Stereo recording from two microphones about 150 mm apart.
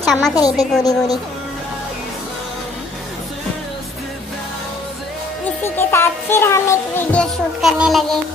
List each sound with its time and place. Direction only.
0.0 s a sound: centre (ahead or behind)
0.4 s a woman's voice: 25° left (ahead or behind)
5.6 s music: 15° left (ahead or behind)
7.6 s a child's voice: centre (ahead or behind)